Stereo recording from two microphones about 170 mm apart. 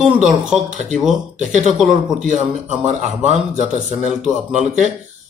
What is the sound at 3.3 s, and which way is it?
Speech, 45° right (ahead or behind).